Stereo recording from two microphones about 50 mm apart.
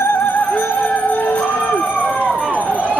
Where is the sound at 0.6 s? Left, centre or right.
Left.